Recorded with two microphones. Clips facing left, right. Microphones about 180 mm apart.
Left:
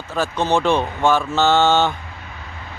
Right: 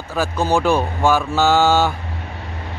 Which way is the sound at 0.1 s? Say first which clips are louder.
Right 1 dB; 10° right (ahead or behind).